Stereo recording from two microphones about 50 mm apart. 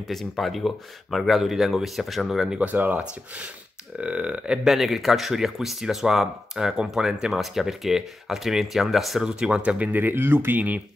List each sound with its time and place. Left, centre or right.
0.1 s speech: centre
2.6 s speech: right
4.0 s speech: right
4.6 s speech: centre
9.2 s speech: centre
9.6 s speech: right
9.9 s speech: right